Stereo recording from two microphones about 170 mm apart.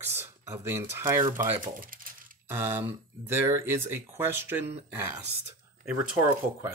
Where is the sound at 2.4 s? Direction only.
15° right (ahead or behind).